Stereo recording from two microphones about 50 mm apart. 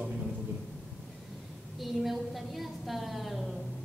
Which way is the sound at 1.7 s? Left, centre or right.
Centre.